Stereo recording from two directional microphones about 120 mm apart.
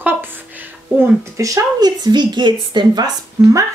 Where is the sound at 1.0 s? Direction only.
25° right (ahead or behind).